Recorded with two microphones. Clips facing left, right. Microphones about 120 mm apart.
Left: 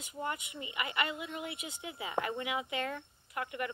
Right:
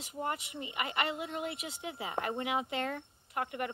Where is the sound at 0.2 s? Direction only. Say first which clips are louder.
Right 2 dB; 45° right (ahead or behind).